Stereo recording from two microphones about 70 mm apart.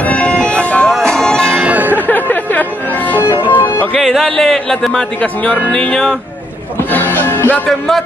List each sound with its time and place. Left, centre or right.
0.1 s music: centre
0.8 s music: centre
1.6 s music: right
2.0 s music: left
3.9 s speech: centre
5.2 s speech: left
5.7 s music: centre
7.2 s music: left